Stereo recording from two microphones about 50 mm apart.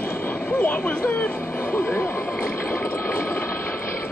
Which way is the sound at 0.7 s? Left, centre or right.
Left.